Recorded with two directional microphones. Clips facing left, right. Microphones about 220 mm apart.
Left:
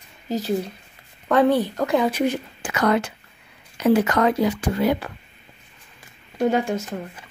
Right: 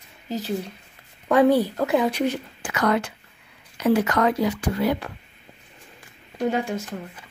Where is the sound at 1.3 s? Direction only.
10° right (ahead or behind).